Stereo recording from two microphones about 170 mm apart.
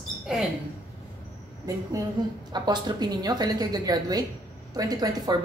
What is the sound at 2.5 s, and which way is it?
A woman's voice, 25° right (ahead or behind).